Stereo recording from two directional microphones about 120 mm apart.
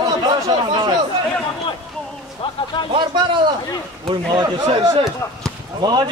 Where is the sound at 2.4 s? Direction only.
50° left (ahead or behind).